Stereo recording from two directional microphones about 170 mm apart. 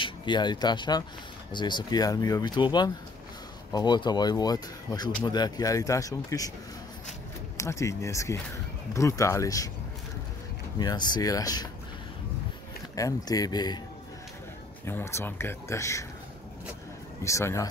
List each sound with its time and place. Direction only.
0.0 s speech: 25° left (ahead or behind)
7.5 s speech: 15° left (ahead or behind)
10.8 s speech: 25° left (ahead or behind)
12.9 s speech: 20° left (ahead or behind)
14.9 s speech: 15° left (ahead or behind)
17.2 s speech: 15° left (ahead or behind)